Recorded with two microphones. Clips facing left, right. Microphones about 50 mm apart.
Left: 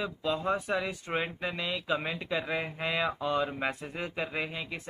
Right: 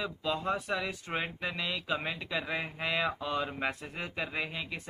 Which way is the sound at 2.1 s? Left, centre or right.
Centre.